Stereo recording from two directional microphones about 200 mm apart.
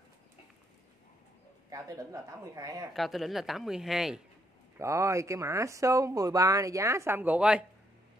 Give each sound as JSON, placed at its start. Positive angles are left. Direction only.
{"t": 1.7, "sound": "speech", "side_deg": -15}
{"t": 2.9, "sound": "speech", "side_deg": 0}
{"t": 4.7, "sound": "speech", "side_deg": -15}